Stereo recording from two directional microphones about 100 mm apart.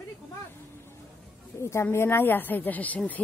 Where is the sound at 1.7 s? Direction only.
25° left (ahead or behind).